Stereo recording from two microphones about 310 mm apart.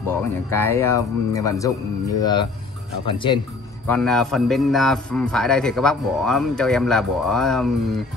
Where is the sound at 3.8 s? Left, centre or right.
Centre.